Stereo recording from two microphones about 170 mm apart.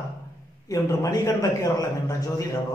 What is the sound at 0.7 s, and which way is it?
A man's voice, 20° left (ahead or behind).